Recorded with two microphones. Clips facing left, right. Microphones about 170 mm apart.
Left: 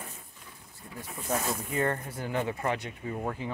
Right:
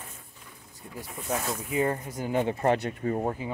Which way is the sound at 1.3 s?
5° right (ahead or behind).